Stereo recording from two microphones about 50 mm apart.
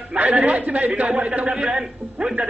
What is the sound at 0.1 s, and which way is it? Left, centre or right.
A man's voice, right.